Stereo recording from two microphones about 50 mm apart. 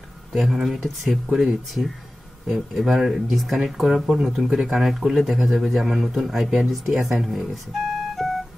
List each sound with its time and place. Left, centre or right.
0.3 s speech: centre
2.4 s speech: centre
6.9 s speech: centre
7.2 s speech: centre